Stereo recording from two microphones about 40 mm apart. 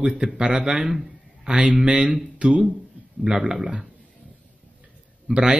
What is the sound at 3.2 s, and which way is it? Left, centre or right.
Speech, centre.